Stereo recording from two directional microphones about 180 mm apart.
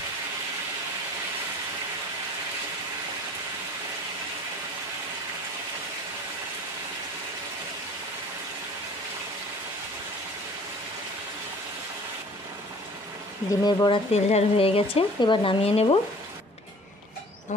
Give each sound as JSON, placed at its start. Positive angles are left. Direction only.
{"t": 13.5, "sound": "speech", "side_deg": 20}
{"t": 14.1, "sound": "speech", "side_deg": 35}